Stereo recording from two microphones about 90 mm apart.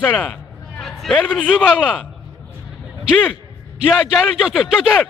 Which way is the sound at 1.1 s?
10° left (ahead or behind).